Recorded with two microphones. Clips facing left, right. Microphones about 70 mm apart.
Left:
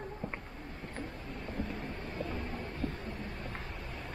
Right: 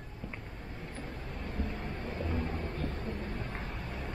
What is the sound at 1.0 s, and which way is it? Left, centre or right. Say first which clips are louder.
Vehicle: even; centre.